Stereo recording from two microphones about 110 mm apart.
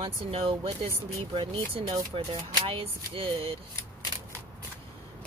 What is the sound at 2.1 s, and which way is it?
Speech, 60° right (ahead or behind).